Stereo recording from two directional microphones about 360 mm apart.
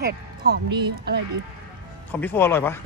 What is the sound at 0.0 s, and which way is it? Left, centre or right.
Speech, right.